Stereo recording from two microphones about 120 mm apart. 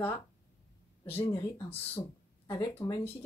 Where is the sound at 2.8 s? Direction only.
20° left (ahead or behind).